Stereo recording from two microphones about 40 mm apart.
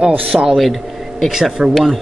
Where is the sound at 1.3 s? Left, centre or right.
Centre.